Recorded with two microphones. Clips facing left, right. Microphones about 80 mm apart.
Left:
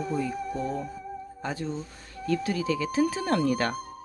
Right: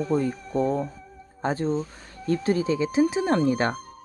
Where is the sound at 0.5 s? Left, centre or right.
Right.